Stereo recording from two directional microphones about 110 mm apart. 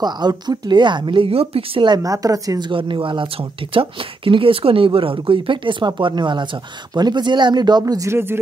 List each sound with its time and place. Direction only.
0.0 s speech: 40° right (ahead or behind)
2.0 s speech: 30° right (ahead or behind)
2.7 s speech: 50° right (ahead or behind); by 8.4 s 25° right (ahead or behind)